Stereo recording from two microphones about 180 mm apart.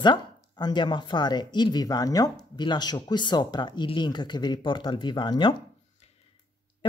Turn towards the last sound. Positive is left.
turn(degrees=25)  # may be behind; listen again after turning